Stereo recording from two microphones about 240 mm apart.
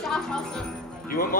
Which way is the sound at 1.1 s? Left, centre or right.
Left.